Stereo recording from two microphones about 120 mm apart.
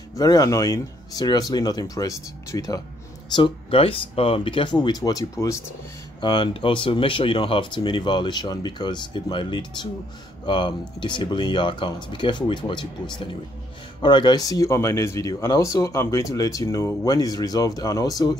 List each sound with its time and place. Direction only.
0.1 s speech: 30° left (ahead or behind)
3.3 s speech: 40° left (ahead or behind)
6.2 s speech: 45° left (ahead or behind)